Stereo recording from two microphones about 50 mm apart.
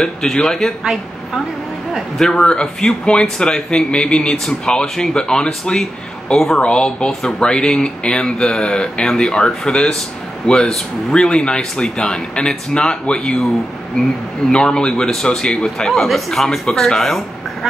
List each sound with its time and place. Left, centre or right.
0.0 s speech: centre
2.1 s speech: centre
14.5 s speech: centre